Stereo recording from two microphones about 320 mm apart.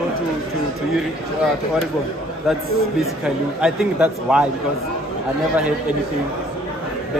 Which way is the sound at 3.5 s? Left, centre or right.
Centre.